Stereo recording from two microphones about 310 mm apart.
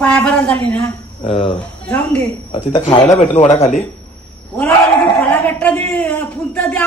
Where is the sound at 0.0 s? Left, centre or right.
Centre.